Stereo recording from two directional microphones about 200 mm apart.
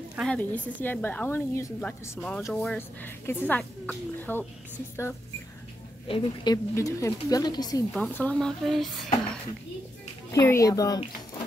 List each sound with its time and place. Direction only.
0.1 s speech: centre (ahead or behind)
6.0 s speech: 25° left (ahead or behind)
7.9 s speech: 5° left (ahead or behind)
10.3 s speech: 15° left (ahead or behind)